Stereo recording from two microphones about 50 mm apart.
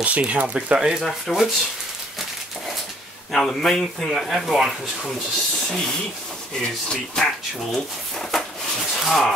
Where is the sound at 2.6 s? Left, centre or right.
Centre.